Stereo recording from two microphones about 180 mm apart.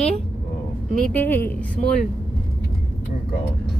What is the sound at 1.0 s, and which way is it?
Speech, 10° left (ahead or behind).